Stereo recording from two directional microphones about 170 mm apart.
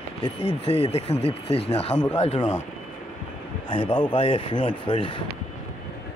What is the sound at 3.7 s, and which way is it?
Speech, 30° left (ahead or behind).